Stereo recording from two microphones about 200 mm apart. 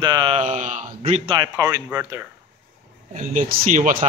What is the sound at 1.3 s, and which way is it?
Speech, 20° right (ahead or behind).